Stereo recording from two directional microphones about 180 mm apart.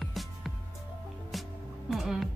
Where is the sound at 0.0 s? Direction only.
Centre (ahead or behind).